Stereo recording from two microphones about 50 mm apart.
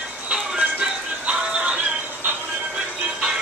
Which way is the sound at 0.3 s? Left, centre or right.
Centre.